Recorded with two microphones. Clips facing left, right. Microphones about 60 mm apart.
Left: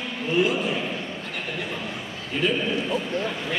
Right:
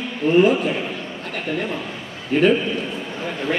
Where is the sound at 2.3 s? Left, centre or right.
Right.